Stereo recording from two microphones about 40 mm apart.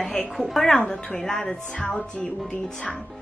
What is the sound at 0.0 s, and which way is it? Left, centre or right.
A woman's voice, centre.